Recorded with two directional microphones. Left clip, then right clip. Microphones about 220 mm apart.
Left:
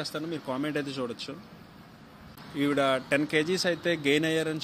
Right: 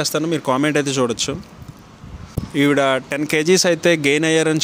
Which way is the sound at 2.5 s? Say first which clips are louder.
Right 10 dB; 50° right (ahead or behind).